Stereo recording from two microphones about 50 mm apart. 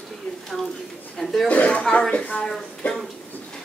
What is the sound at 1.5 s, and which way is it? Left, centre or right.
Speech, left.